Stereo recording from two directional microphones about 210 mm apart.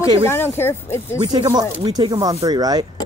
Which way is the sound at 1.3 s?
25° right (ahead or behind).